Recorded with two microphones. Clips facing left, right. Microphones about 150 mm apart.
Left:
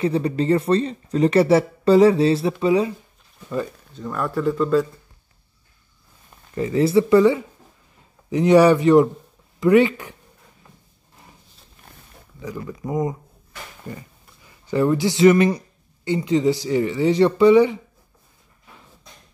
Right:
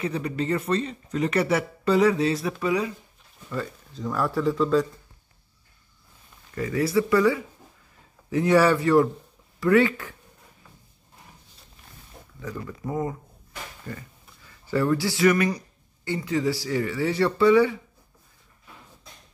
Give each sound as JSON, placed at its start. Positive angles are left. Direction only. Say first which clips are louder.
{"t": 0.0, "sound": "speech", "louder": "left 7 dB", "side_deg": 30}
{"t": 3.4, "sound": "speech", "louder": "left 5 dB", "side_deg": 15}
{"t": 3.9, "sound": "speech", "louder": "even", "side_deg": 0}
{"t": 6.5, "sound": "speech", "louder": "left 6 dB", "side_deg": 25}
{"t": 12.4, "sound": "speech", "louder": "left 4 dB", "side_deg": 15}